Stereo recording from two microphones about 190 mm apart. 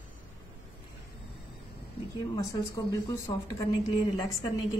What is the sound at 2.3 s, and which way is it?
Speech, 15° left (ahead or behind).